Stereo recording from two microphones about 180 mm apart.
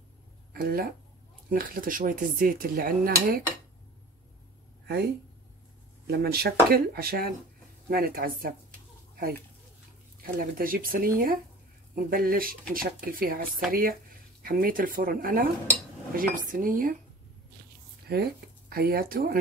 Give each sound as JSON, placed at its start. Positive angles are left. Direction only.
{"t": 0.5, "sound": "speech", "side_deg": -55}
{"t": 4.8, "sound": "speech", "side_deg": -65}
{"t": 10.2, "sound": "speech", "side_deg": -50}
{"t": 18.1, "sound": "speech", "side_deg": -65}